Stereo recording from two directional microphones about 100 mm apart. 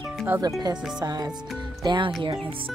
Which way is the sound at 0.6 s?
40° right (ahead or behind).